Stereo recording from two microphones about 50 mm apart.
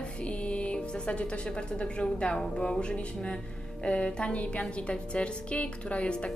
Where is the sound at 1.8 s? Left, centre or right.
Left.